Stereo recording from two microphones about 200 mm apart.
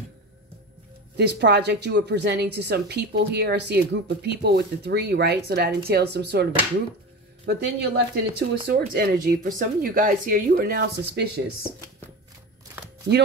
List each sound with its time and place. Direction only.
1.1 s a woman's voice: 55° right (ahead or behind)